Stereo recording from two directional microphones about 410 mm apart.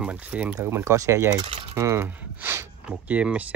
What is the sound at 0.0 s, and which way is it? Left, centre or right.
Speech, centre.